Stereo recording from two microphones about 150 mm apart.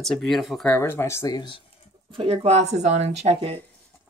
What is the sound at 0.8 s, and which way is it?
Speech, 15° left (ahead or behind).